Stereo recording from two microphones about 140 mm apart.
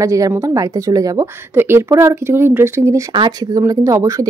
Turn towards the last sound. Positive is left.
turn(degrees=-20)  # may be behind; listen again after turning